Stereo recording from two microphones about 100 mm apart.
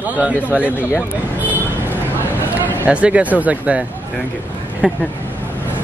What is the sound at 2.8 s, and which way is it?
Speech, 10° right (ahead or behind).